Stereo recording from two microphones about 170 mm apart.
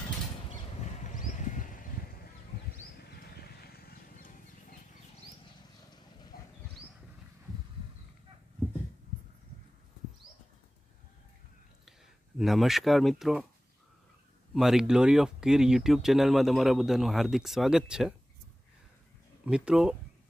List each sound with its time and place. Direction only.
1.1 s a sound: 45° left (ahead or behind)
3.3 s vehicle: 65° left (ahead or behind)
12.4 s speech: centre (ahead or behind)
14.5 s speech: centre (ahead or behind)
19.4 s speech: 5° right (ahead or behind)